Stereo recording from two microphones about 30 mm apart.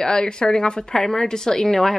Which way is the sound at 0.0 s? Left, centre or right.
Left.